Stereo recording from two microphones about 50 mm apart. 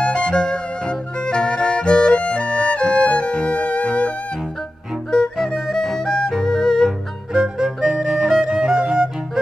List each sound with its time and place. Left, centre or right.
0.0 s music: centre
5.1 s music: centre
7.3 s music: centre